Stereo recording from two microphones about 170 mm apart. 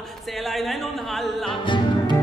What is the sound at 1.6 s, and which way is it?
Music, 30° left (ahead or behind).